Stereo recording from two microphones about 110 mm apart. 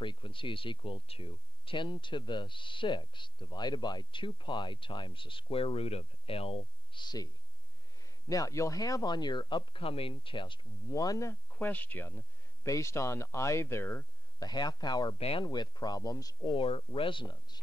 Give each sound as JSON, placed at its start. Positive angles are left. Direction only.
{"t": 0.0, "sound": "speech", "side_deg": 50}
{"t": 8.3, "sound": "speech", "side_deg": 30}
{"t": 10.9, "sound": "speech", "side_deg": 30}
{"t": 11.5, "sound": "speech", "side_deg": 15}
{"t": 14.4, "sound": "speech", "side_deg": 40}
{"t": 15.1, "sound": "speech", "side_deg": 60}
{"t": 15.4, "sound": "speech", "side_deg": 40}
{"t": 16.5, "sound": "speech", "side_deg": 55}